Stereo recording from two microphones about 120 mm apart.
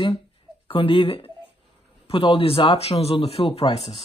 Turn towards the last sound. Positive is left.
turn(degrees=50)  # may be behind; listen again after turning